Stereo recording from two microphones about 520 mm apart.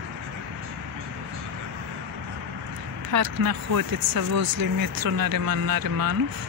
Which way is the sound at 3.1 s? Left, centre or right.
Right.